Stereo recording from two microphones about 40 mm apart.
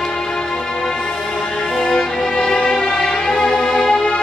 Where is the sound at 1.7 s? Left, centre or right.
Centre.